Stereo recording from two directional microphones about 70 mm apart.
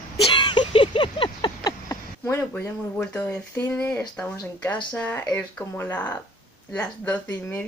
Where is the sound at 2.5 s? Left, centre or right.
Centre.